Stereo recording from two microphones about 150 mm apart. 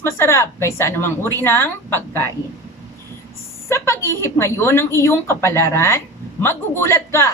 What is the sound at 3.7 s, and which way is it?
A woman's voice, 15° left (ahead or behind).